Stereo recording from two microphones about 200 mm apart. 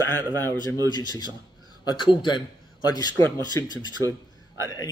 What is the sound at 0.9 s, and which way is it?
Speech, 20° left (ahead or behind).